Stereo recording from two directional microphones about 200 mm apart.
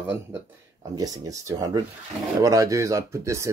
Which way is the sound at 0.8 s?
20° right (ahead or behind).